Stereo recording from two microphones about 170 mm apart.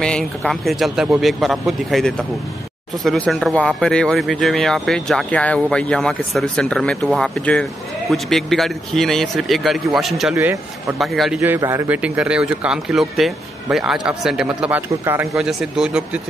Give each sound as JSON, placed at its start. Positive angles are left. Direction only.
{"t": 0.0, "sound": "speech", "side_deg": 5}
{"t": 10.3, "sound": "speech", "side_deg": -15}
{"t": 11.0, "sound": "speech", "side_deg": 0}